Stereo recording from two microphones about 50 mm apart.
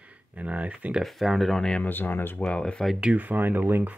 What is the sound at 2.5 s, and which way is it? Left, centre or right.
Speech, left.